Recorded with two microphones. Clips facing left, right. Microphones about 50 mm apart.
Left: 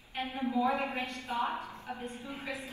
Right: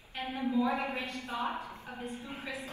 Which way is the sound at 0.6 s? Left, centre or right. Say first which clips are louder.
Left 1 dB; left.